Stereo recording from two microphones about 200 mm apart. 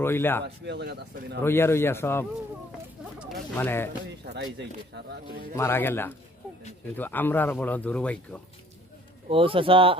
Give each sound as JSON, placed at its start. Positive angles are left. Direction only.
{"t": 0.0, "sound": "speech", "side_deg": 10}
{"t": 0.7, "sound": "speech", "side_deg": -55}
{"t": 1.4, "sound": "speech", "side_deg": 10}
{"t": 3.5, "sound": "speech", "side_deg": 10}
{"t": 4.3, "sound": "speech", "side_deg": -60}
{"t": 5.6, "sound": "speech", "side_deg": 10}
{"t": 9.3, "sound": "speech", "side_deg": -25}